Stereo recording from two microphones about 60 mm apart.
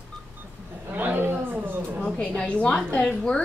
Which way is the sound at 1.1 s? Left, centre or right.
Right.